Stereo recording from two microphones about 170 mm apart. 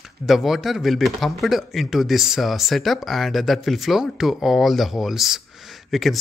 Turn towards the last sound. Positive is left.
turn(degrees=0)  # may be behind; listen again after turning